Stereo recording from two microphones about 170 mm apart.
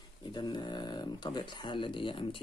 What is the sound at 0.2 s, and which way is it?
Speech, 25° left (ahead or behind).